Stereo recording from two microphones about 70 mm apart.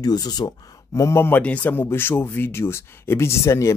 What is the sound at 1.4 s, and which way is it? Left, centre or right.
Speech, left.